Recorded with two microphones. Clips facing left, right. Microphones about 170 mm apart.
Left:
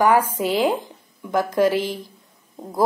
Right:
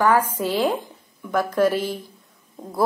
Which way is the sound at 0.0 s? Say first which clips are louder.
Left 2 dB; 15° left (ahead or behind).